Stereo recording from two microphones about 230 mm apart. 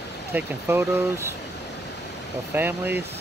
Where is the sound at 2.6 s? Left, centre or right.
Centre.